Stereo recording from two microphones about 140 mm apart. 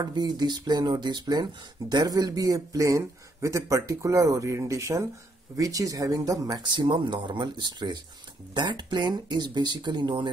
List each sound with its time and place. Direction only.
0.0 s speech: 30° right (ahead or behind)